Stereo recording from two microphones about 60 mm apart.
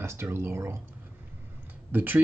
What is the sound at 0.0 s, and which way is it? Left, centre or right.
Speech, right.